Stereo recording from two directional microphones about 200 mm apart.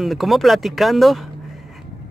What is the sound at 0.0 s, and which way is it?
Speech, centre (ahead or behind).